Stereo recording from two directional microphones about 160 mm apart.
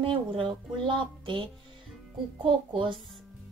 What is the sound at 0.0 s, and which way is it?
Speech, 35° right (ahead or behind).